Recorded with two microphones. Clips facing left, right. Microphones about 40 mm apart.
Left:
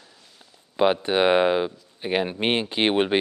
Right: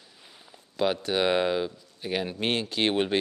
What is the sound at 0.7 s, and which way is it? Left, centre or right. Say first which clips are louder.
A man's voice: left 6 dB; left.